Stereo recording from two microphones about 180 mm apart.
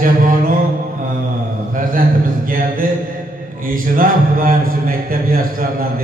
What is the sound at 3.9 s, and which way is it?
A man's voice, 50° right (ahead or behind).